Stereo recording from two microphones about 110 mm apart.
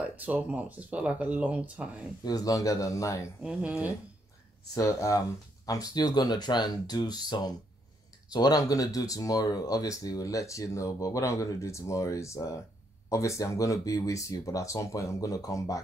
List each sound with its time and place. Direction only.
0.1 s speech: 15° right (ahead or behind)
2.2 s speech: 35° left (ahead or behind)
3.4 s speech: 10° right (ahead or behind)
4.7 s speech: 30° left (ahead or behind)